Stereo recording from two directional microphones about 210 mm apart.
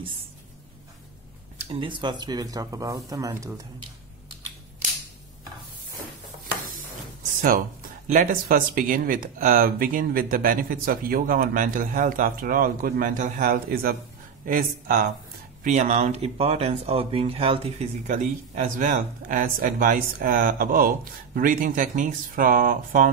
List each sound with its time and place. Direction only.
1.7 s speech: 25° right (ahead or behind)
4.8 s a sound: 35° right (ahead or behind)
8.1 s speech: 40° right (ahead or behind)